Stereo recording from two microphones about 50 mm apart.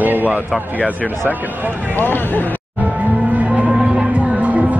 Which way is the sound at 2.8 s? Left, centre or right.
Right.